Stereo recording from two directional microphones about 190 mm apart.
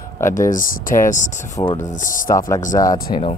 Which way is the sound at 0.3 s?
45° left (ahead or behind).